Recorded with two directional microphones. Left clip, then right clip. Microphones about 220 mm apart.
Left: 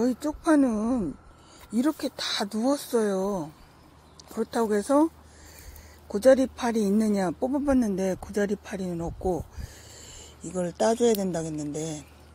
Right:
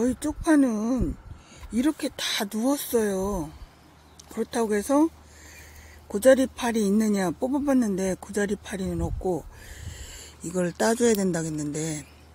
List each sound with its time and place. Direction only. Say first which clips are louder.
0.0 s speech: even; 15° right (ahead or behind)
6.1 s speech: right 1 dB; 20° right (ahead or behind)